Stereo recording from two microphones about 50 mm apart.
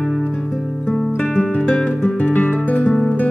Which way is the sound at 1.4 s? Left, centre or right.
Centre.